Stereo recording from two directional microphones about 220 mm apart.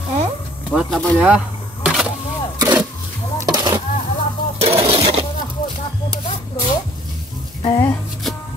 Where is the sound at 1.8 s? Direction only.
5° right (ahead or behind).